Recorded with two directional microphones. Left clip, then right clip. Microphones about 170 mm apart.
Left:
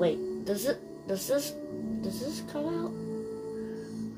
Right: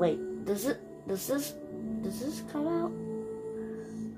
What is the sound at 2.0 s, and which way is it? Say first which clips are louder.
Speech: right 1 dB; 20° right (ahead or behind).